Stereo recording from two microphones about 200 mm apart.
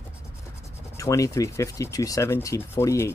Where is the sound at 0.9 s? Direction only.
15° left (ahead or behind).